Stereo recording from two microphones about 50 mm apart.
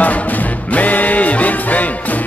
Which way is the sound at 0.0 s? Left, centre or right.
Left.